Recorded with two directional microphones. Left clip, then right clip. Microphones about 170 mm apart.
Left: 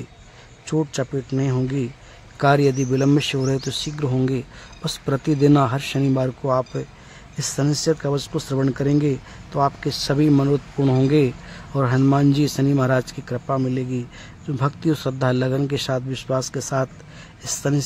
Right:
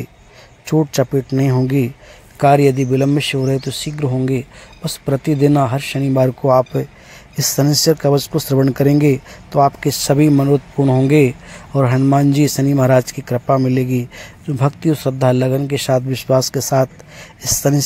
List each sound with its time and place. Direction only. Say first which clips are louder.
0.9 s a man's voice: right 8 dB; 20° right (ahead or behind); by 6.1 s 5° right (ahead or behind)
6.1 s speech: right 11 dB; 20° right (ahead or behind)
10.8 s speech: right 3 dB; centre (ahead or behind)
11.1 s a man's voice: right 6 dB; 15° right (ahead or behind)